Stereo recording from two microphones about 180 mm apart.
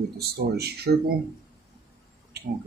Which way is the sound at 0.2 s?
60° right (ahead or behind).